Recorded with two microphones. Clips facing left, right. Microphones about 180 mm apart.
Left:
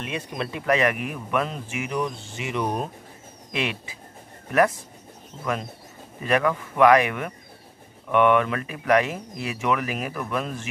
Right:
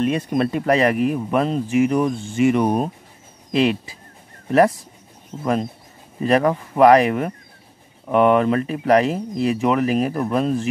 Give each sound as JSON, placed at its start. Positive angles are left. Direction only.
{"t": 0.0, "sound": "speech", "side_deg": -45}
{"t": 3.5, "sound": "speech", "side_deg": -35}